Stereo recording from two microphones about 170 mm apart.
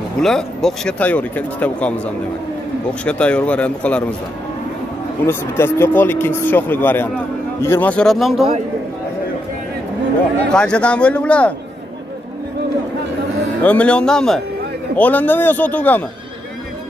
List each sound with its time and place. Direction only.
0.2 s speech: centre (ahead or behind)
5.2 s speech: 15° left (ahead or behind); by 8.5 s centre (ahead or behind)
10.5 s speech: 5° left (ahead or behind)
13.6 s speech: 5° left (ahead or behind)